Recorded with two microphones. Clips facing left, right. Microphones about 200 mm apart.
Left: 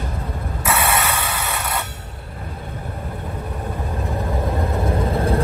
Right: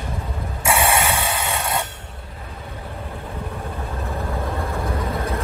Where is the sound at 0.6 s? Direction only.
30° right (ahead or behind).